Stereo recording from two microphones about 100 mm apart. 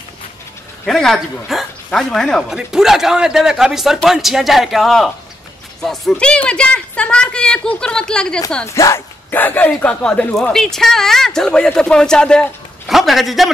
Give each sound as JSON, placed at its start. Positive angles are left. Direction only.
{"t": 0.8, "sound": "speech", "side_deg": 5}
{"t": 8.6, "sound": "speech", "side_deg": 30}
{"t": 9.3, "sound": "speech", "side_deg": 20}